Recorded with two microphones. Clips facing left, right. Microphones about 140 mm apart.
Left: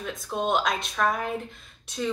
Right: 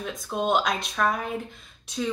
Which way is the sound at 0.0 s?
Centre (ahead or behind).